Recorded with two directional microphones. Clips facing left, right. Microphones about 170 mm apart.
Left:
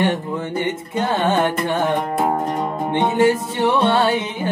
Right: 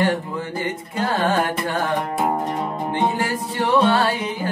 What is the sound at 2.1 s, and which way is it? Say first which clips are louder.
Music: left 2 dB; centre (ahead or behind).